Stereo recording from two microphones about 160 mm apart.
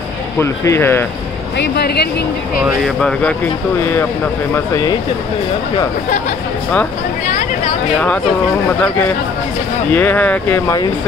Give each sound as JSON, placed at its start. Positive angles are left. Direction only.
{"t": 0.4, "sound": "speech", "side_deg": 15}
{"t": 1.6, "sound": "speech", "side_deg": 90}
{"t": 3.0, "sound": "speech", "side_deg": 5}
{"t": 9.8, "sound": "speech", "side_deg": 10}